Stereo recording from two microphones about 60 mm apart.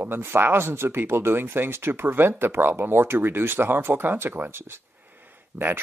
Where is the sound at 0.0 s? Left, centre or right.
Right.